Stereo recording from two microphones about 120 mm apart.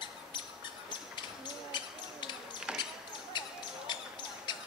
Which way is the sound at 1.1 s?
40° left (ahead or behind).